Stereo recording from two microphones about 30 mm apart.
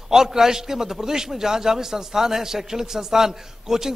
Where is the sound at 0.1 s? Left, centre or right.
Centre.